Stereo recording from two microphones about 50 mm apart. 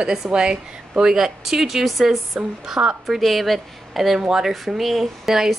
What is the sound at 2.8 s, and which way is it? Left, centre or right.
Speech, right.